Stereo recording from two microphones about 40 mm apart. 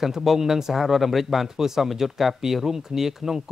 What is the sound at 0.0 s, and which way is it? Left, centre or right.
Speech, centre.